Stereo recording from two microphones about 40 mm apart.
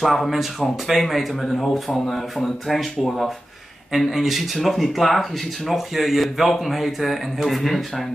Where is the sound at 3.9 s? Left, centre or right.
Centre.